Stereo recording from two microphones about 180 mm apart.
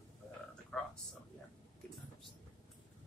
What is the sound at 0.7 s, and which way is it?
Speech, 10° left (ahead or behind).